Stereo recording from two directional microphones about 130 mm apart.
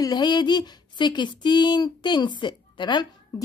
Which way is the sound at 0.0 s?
35° left (ahead or behind).